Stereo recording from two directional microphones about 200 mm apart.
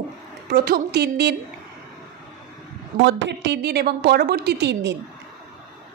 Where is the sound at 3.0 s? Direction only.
60° right (ahead or behind).